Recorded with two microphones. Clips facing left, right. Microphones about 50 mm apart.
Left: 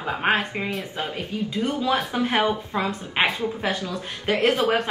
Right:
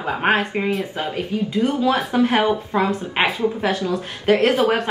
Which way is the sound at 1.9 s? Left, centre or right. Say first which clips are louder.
Right 5 dB; centre.